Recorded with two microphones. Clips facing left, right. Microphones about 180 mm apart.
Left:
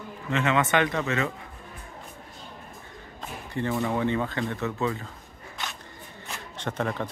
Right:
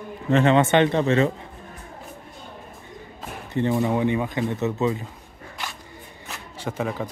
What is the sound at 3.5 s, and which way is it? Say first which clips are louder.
Speech: right 5 dB; 20° right (ahead or behind).